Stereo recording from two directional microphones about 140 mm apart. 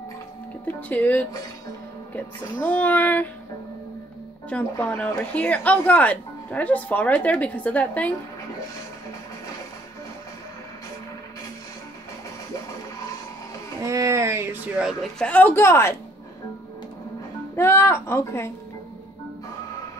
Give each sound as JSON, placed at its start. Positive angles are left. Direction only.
{"t": 0.7, "sound": "speech", "side_deg": 10}
{"t": 4.5, "sound": "speech", "side_deg": 10}
{"t": 13.8, "sound": "speech", "side_deg": -20}
{"t": 15.1, "sound": "speech", "side_deg": 10}
{"t": 17.6, "sound": "speech", "side_deg": 15}